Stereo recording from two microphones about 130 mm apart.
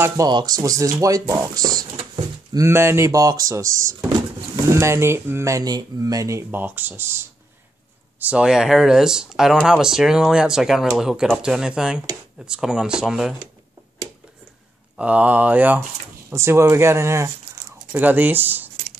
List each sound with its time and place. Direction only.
0.3 s speech: 30° right (ahead or behind)
8.3 s speech: 5° right (ahead or behind)
15.0 s speech: 10° right (ahead or behind)